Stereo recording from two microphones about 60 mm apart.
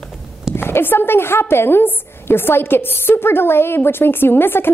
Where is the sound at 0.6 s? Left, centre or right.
Left.